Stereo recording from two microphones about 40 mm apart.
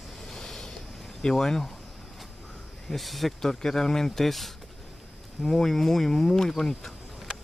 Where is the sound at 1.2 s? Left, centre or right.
Centre.